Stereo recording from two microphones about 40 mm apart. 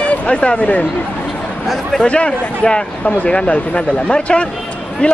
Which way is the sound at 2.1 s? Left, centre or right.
Left.